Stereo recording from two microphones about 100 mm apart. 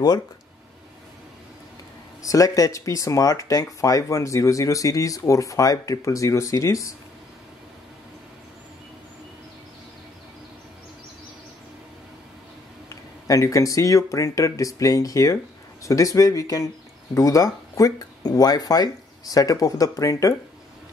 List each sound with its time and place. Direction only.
2.2 s speech: 35° left (ahead or behind)
13.3 s speech: 35° left (ahead or behind)